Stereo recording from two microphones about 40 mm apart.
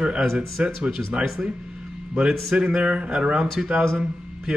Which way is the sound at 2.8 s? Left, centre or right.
Right.